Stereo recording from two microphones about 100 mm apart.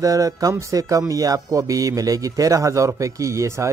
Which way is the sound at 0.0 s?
35° right (ahead or behind).